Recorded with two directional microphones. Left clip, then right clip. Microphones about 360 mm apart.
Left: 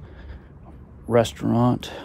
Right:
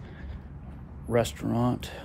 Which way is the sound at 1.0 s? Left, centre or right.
Left.